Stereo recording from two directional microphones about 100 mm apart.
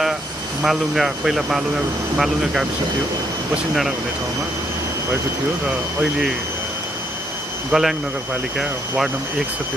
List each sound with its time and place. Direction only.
0.6 s speech: 5° right (ahead or behind)
7.7 s speech: 5° right (ahead or behind)